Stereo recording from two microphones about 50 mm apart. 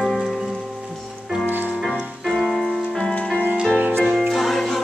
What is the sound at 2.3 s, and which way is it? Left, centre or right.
Music, centre.